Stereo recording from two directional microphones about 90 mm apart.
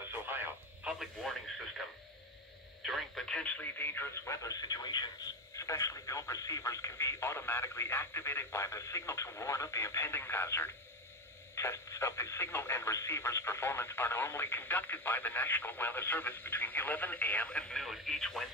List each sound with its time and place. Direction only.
0.1 s radio: 25° right (ahead or behind)
2.8 s radio: centre (ahead or behind)
3.6 s speech: 25° left (ahead or behind)
4.4 s speech: 45° left (ahead or behind)
5.6 s speech: 40° left (ahead or behind); by 18.5 s 5° left (ahead or behind)